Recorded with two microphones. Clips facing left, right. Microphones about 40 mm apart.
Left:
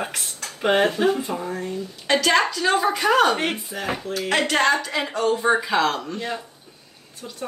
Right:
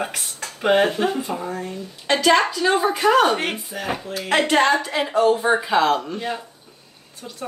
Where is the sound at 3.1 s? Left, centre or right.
Centre.